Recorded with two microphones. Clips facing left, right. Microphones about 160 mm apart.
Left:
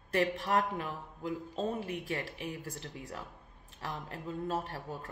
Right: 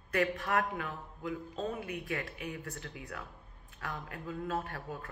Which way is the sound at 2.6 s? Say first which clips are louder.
Left 1 dB; 35° left (ahead or behind).